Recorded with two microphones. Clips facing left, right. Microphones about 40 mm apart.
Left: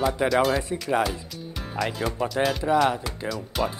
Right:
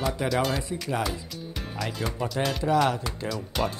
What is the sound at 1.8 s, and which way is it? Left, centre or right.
Speech, centre.